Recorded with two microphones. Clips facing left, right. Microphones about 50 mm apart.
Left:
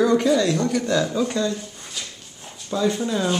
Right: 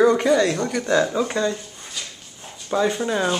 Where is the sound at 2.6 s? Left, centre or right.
Right.